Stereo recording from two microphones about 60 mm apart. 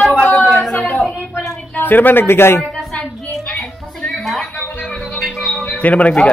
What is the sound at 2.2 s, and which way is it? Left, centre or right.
Speech, left.